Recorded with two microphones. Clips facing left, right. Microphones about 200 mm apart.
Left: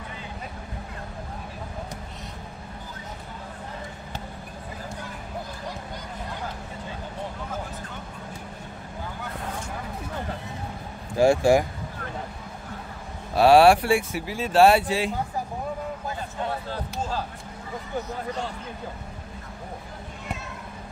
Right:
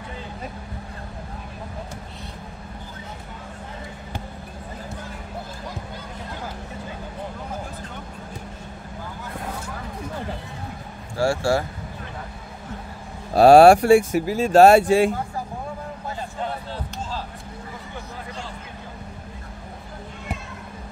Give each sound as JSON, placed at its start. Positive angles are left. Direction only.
{"t": 11.1, "sound": "speech", "side_deg": 15}
{"t": 13.3, "sound": "speech", "side_deg": -45}